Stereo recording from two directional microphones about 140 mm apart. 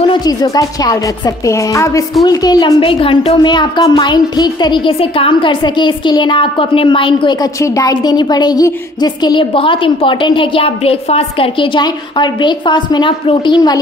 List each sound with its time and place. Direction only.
0.0 s a woman's voice: 30° left (ahead or behind)
7.6 s a woman's voice: 25° left (ahead or behind)